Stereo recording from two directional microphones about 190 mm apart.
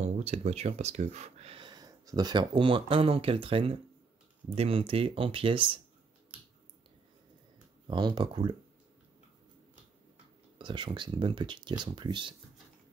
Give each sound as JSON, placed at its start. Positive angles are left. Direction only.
{"t": 0.0, "sound": "speech", "side_deg": -35}
{"t": 7.9, "sound": "speech", "side_deg": -25}
{"t": 10.6, "sound": "speech", "side_deg": -25}